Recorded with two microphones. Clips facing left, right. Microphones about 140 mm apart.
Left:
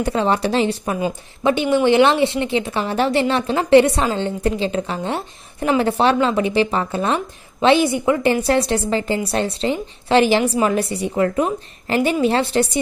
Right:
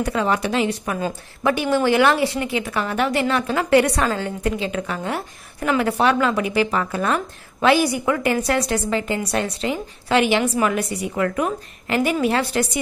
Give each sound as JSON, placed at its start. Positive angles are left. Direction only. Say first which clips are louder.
{"t": 0.0, "sound": "a woman's voice", "louder": "left 2 dB", "side_deg": 30}
{"t": 0.9, "sound": "a woman's voice", "louder": "left 3 dB", "side_deg": 20}